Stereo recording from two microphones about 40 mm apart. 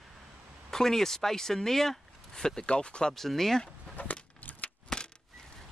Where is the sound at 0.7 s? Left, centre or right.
Centre.